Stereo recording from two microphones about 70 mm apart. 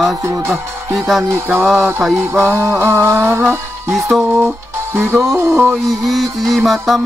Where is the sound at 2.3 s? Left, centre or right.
Right.